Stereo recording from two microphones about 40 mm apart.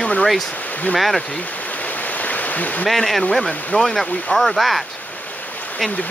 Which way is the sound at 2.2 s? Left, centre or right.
Left.